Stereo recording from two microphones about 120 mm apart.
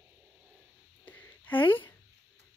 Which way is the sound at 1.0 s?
15° left (ahead or behind).